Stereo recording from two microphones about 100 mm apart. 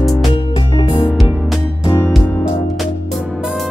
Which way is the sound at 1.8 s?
25° left (ahead or behind).